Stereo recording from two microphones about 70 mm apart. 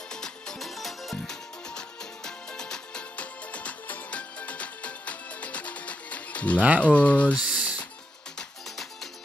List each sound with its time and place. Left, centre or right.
0.1 s music: centre
6.8 s speech: centre
7.3 s a sound: centre
8.4 s music: centre